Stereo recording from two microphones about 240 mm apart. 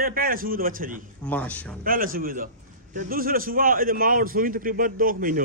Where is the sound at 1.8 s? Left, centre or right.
Right.